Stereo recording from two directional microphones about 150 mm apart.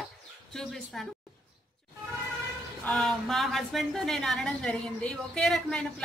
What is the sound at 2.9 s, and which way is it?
A woman's voice, 5° left (ahead or behind).